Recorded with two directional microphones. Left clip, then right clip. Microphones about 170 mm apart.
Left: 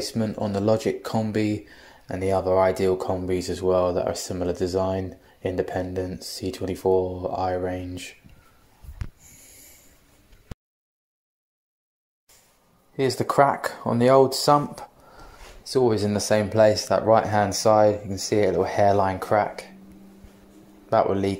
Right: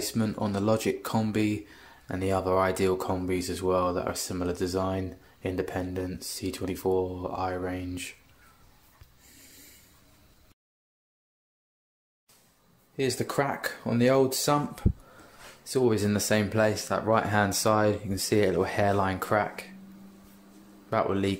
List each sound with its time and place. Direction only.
0.0 s speech: centre (ahead or behind)
13.2 s speech: 10° left (ahead or behind)
16.5 s speech: 20° left (ahead or behind)
17.0 s speech: 5° left (ahead or behind)
18.1 s speech: 30° right (ahead or behind)
18.4 s speech: centre (ahead or behind)
20.9 s speech: 5° left (ahead or behind)